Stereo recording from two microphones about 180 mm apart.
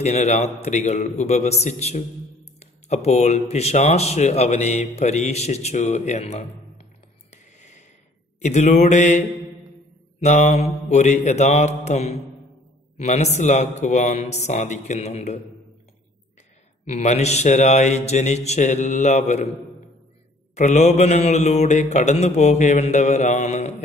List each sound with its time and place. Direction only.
0.0 s speech: 35° left (ahead or behind)
8.4 s speech: 40° left (ahead or behind)
10.2 s speech: 40° left (ahead or behind)
16.8 s speech: 40° left (ahead or behind)
20.5 s speech: 40° left (ahead or behind)